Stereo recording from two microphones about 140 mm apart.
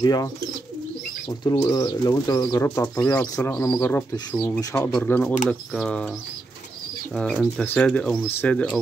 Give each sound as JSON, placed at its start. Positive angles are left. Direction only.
{"t": 0.0, "sound": "speech", "side_deg": 30}
{"t": 1.4, "sound": "speech", "side_deg": 30}
{"t": 2.6, "sound": "speech", "side_deg": 20}
{"t": 7.2, "sound": "speech", "side_deg": 5}